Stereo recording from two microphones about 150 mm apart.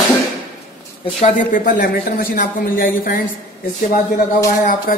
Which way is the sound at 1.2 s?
60° left (ahead or behind).